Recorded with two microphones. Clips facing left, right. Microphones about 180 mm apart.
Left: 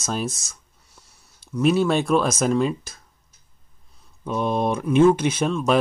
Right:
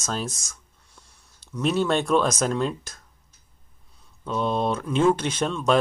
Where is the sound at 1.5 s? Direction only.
5° left (ahead or behind).